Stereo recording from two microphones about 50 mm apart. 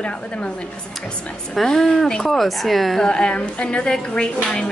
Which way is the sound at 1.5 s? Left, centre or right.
Centre.